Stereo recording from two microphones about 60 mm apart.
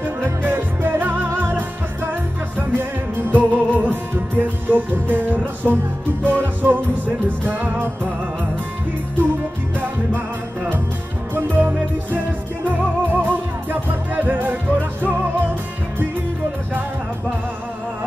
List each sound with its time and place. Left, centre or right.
0.0 s music: right
2.7 s music: right
9.8 s music: right
12.6 s music: right